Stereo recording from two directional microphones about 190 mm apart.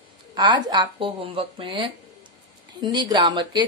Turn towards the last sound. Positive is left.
turn(degrees=-20)  # may be behind; listen again after turning